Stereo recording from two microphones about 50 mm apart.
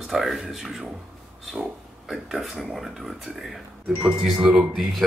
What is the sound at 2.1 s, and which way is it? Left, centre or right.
Speech, centre.